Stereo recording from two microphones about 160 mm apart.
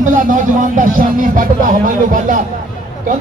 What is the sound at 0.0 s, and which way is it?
Music, 55° right (ahead or behind).